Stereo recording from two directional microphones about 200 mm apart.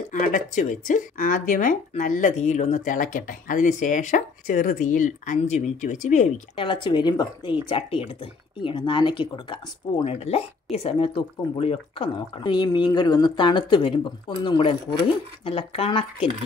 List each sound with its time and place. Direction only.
0.1 s speech: 40° left (ahead or behind)
6.5 s speech: 25° left (ahead or behind)